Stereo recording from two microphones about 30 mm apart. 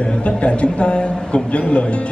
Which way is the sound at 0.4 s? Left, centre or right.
Left.